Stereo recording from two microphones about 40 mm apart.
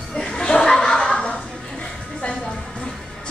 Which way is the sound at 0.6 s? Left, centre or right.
Centre.